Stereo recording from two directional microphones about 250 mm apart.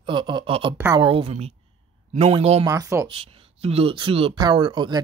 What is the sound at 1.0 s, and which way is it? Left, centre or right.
Speech, right.